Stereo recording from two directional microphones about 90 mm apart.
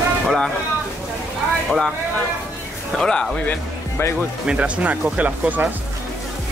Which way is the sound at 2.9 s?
5° left (ahead or behind).